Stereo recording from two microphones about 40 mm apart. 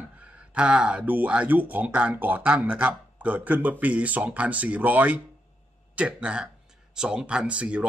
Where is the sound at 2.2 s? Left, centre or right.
Right.